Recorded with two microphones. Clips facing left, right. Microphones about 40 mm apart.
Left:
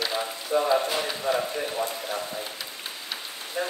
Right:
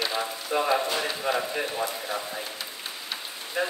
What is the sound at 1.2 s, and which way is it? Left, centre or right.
Speech, centre.